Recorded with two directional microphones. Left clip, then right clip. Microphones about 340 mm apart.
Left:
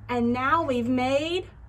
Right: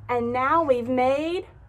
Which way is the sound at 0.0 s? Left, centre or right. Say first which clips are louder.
Right 2 dB; centre.